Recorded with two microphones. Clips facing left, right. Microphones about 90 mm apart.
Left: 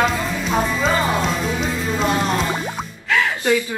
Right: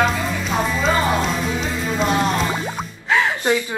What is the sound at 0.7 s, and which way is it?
Music, centre (ahead or behind).